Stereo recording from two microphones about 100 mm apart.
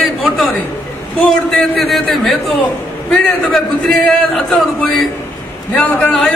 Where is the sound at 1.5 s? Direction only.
5° left (ahead or behind).